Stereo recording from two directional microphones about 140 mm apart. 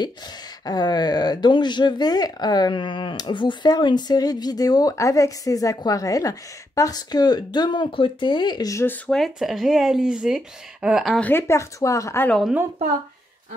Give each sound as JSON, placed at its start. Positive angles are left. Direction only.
{"t": 0.7, "sound": "speech", "side_deg": 30}
{"t": 9.0, "sound": "speech", "side_deg": 0}
{"t": 11.1, "sound": "speech", "side_deg": 15}
{"t": 12.3, "sound": "speech", "side_deg": 5}